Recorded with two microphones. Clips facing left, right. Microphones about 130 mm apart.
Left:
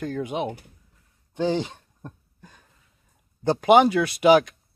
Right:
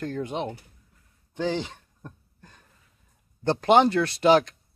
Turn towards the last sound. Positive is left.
turn(degrees=10)  # may be behind; listen again after turning